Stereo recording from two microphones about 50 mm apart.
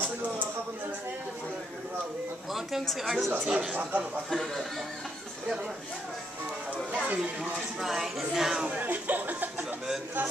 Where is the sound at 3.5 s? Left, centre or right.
Centre.